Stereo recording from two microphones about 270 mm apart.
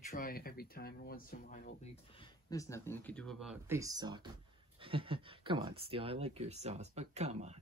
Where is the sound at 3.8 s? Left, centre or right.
Centre.